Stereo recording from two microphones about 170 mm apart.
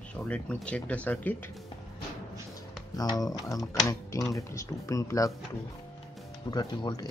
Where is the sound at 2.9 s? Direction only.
20° left (ahead or behind).